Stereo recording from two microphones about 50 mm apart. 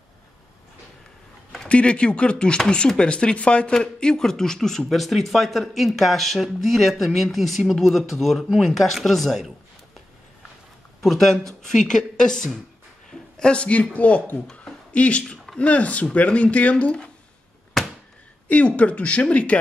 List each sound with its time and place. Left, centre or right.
1.7 s speech: left; by 9.5 s centre
11.0 s speech: centre
13.1 s a sound: centre
13.7 s speech: left
14.6 s a sound: left
15.2 s speech: centre
18.5 s speech: left